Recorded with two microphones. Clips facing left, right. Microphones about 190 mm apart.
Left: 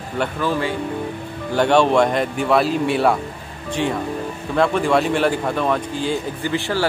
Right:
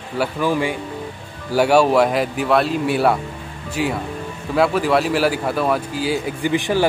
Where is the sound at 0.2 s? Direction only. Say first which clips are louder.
Right 2 dB; 10° right (ahead or behind).